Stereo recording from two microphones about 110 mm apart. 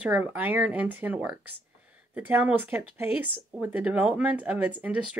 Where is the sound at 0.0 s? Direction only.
10° right (ahead or behind).